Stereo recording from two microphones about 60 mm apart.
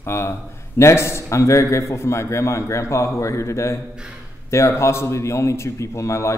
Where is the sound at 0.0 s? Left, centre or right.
Left.